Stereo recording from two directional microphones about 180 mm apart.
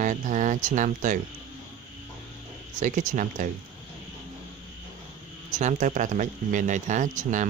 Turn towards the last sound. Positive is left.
turn(degrees=-45)  # may be behind; listen again after turning